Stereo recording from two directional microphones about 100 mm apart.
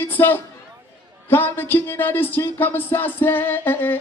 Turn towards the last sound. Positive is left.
turn(degrees=20)  # may be behind; listen again after turning